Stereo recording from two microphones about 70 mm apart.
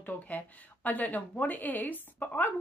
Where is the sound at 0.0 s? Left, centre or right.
Left.